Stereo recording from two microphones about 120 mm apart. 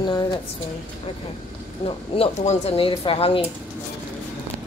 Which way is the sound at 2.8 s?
50° left (ahead or behind).